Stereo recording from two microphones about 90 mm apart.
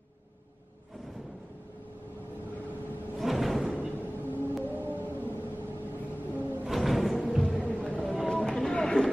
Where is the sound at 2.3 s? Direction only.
20° left (ahead or behind).